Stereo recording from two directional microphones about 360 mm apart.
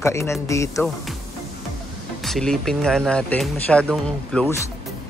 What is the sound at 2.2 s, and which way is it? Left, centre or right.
Speech, centre.